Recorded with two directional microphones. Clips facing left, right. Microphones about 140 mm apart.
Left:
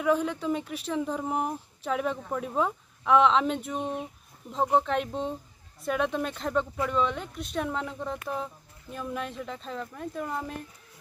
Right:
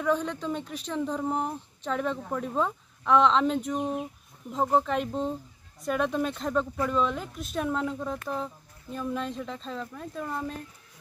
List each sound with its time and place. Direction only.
0.0 s speech: 5° left (ahead or behind)